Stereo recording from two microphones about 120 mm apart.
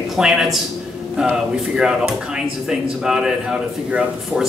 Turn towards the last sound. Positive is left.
turn(degrees=-5)  # may be behind; listen again after turning